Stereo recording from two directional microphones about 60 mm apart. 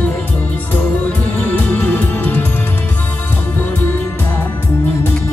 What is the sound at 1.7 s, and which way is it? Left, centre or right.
Music, left.